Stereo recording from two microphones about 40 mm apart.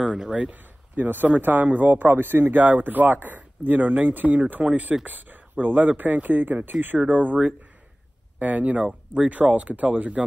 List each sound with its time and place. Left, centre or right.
0.3 s speech: right
0.9 s speech: right
7.1 s speech: right
8.4 s speech: right
8.8 s speech: centre
9.6 s speech: right